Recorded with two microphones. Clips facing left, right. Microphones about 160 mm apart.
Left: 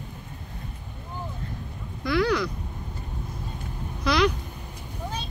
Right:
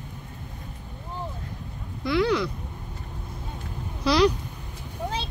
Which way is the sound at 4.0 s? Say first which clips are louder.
Right 2 dB; 30° right (ahead or behind).